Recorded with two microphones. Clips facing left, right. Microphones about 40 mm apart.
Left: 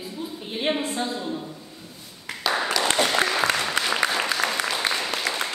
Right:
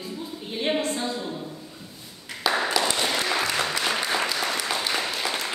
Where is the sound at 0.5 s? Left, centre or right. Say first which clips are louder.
Even; centre.